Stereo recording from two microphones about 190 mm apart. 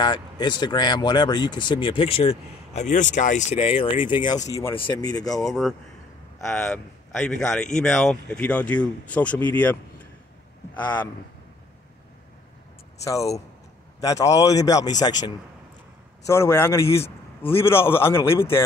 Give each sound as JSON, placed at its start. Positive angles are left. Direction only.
{"t": 0.0, "sound": "a man's voice", "side_deg": 25}
{"t": 5.5, "sound": "speech", "side_deg": 0}
{"t": 13.0, "sound": "a man's voice", "side_deg": 15}